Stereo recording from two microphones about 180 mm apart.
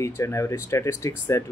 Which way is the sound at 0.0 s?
15° left (ahead or behind).